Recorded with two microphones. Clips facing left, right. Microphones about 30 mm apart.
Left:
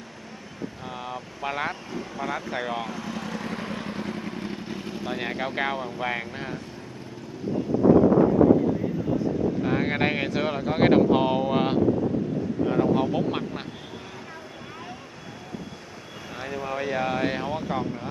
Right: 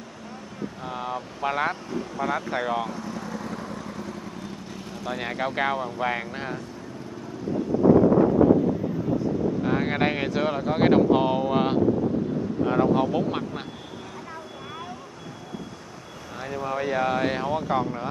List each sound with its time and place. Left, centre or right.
0.8 s speech: centre
2.8 s vehicle: left
4.6 s vehicle: left
5.2 s speech: centre
9.6 s speech: centre
12.6 s speech: centre
16.3 s speech: centre